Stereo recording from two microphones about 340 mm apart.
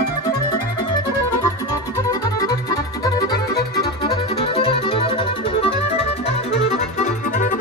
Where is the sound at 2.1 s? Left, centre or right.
Centre.